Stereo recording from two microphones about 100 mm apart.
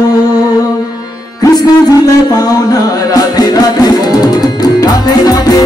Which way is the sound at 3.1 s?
40° left (ahead or behind).